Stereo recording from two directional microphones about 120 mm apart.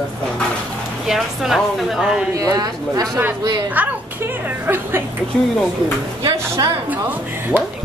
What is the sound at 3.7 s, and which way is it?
A woman's voice, 15° right (ahead or behind).